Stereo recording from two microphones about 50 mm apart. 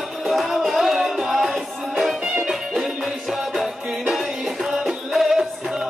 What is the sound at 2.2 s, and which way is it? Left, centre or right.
Music, centre.